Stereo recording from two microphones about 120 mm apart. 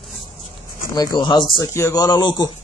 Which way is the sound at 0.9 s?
30° left (ahead or behind).